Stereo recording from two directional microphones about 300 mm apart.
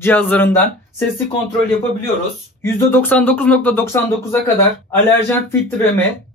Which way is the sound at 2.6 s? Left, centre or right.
Centre.